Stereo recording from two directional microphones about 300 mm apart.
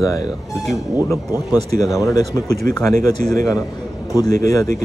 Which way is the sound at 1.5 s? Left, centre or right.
Centre.